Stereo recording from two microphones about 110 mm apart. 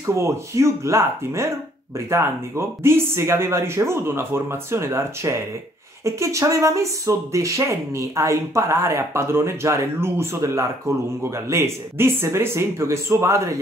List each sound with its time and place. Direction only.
0.0 s speech: 25° right (ahead or behind)